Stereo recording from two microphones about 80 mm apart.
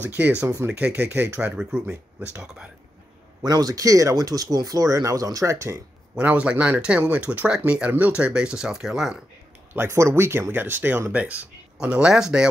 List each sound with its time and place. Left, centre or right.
0.0 s speech: right
0.4 s speech: right
0.7 s speech: centre
1.6 s speech: centre
3.4 s speech: right
6.1 s speech: centre
9.8 s speech: right; by 12.4 s centre